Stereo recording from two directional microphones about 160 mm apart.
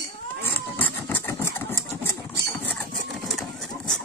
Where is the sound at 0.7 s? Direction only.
10° left (ahead or behind).